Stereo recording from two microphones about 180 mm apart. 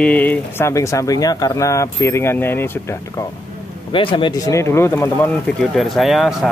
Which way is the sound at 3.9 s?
30° left (ahead or behind).